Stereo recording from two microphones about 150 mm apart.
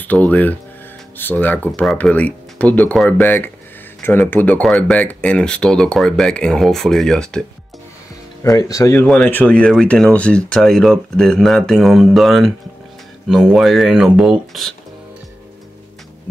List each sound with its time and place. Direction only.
0.0 s speech: 10° left (ahead or behind)
8.5 s speech: 25° left (ahead or behind)
9.0 s speech: 10° left (ahead or behind)